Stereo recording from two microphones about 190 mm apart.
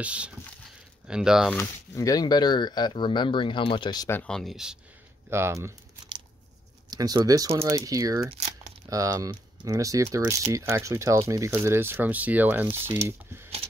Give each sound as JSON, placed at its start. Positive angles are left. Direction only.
{"t": 0.0, "sound": "speech", "side_deg": -5}
{"t": 1.5, "sound": "speech", "side_deg": 15}
{"t": 4.2, "sound": "speech", "side_deg": 5}
{"t": 5.3, "sound": "speech", "side_deg": -15}
{"t": 6.9, "sound": "speech", "side_deg": -20}